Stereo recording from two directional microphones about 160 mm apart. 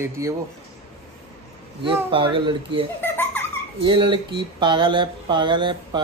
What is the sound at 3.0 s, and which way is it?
Baby laughter, 15° left (ahead or behind).